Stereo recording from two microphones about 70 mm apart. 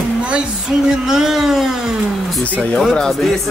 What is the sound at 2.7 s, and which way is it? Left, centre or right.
Speech, centre.